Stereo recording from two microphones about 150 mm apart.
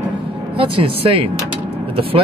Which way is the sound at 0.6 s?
35° right (ahead or behind).